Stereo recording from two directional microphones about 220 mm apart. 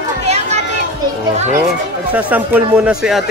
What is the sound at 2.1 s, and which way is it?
Speech, 5° right (ahead or behind).